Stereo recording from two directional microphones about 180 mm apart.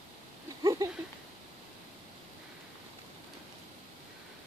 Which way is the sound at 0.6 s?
20° right (ahead or behind).